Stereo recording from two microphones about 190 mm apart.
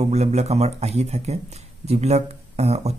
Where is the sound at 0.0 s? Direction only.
35° right (ahead or behind).